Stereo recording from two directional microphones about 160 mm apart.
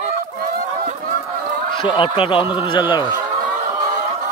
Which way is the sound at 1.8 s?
35° left (ahead or behind).